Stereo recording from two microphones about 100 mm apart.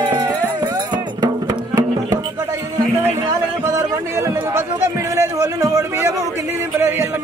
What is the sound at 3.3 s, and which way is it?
Music, 35° right (ahead or behind).